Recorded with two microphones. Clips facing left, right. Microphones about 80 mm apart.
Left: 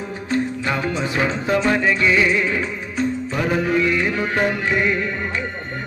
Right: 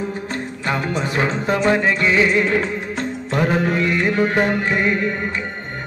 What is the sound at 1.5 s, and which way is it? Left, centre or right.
Music, centre.